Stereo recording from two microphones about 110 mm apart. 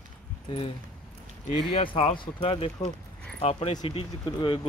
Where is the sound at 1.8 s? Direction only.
50° left (ahead or behind).